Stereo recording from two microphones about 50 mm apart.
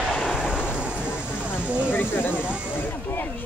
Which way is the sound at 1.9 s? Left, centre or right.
Left.